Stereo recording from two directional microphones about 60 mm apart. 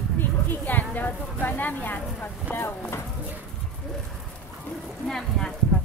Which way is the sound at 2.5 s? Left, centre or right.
Left.